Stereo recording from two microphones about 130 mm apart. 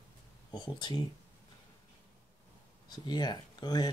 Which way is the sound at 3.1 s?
30° left (ahead or behind).